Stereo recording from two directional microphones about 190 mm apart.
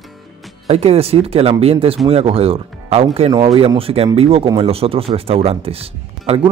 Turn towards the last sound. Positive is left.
turn(degrees=-30)  # may be behind; listen again after turning